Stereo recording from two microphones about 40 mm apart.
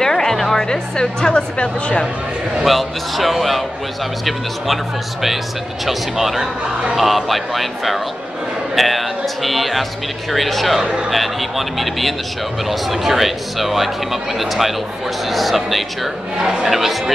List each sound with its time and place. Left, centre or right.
0.0 s music: centre
0.7 s a woman's voice: left
2.6 s speech: centre
5.9 s speech: centre
10.8 s speech: right
11.1 s speech: centre
16.3 s speech: right
16.6 s speech: centre